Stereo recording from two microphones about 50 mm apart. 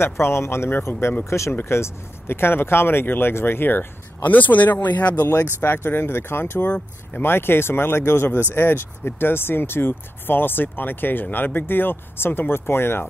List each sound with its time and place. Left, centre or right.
0.0 s speech: left
1.7 s speech: left
5.3 s speech: left